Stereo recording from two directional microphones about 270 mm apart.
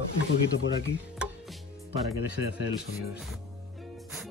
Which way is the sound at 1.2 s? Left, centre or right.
Centre.